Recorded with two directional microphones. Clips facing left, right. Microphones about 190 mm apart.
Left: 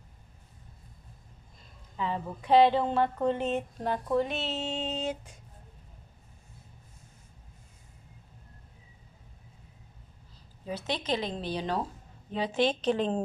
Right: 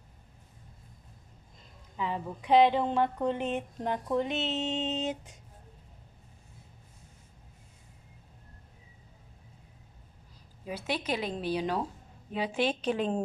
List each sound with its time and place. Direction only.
2.0 s a woman's voice: 10° right (ahead or behind)
10.6 s a woman's voice: 10° right (ahead or behind)